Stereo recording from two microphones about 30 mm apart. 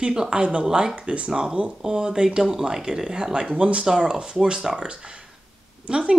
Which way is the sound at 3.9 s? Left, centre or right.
Right.